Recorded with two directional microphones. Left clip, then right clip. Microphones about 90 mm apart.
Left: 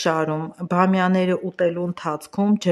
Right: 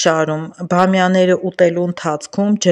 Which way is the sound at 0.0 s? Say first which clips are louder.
Right 6 dB; 25° right (ahead or behind).